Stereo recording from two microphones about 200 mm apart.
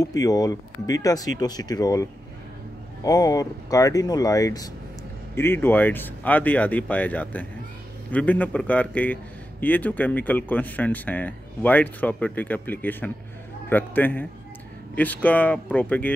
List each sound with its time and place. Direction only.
0.0 s a man's voice: 15° left (ahead or behind)